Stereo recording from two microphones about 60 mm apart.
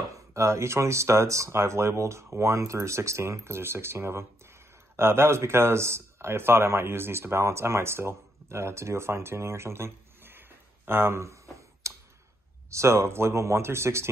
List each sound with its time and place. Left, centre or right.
0.1 s speech: right
10.9 s a sound: right
12.6 s speech: right